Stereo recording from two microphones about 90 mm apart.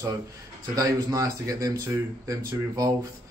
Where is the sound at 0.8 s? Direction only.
40° right (ahead or behind).